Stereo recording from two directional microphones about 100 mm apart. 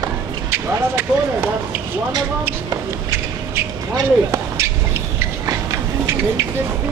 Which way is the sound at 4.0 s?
30° right (ahead or behind).